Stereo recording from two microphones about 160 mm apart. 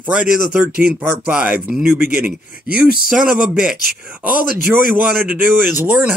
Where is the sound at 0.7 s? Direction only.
70° right (ahead or behind).